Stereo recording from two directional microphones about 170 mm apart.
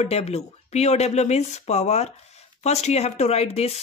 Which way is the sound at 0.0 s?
40° left (ahead or behind).